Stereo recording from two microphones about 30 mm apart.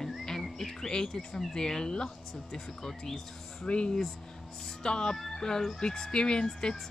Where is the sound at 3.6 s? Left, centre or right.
Left.